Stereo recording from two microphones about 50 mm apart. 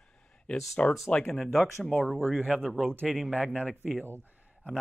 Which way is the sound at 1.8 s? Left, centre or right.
Left.